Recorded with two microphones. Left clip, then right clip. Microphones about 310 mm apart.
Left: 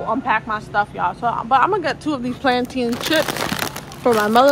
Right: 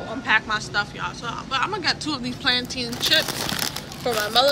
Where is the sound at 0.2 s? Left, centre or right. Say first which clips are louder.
Left 1 dB; centre.